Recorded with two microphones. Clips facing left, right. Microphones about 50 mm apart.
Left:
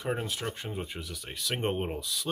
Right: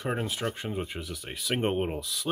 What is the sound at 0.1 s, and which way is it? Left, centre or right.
Speech, centre.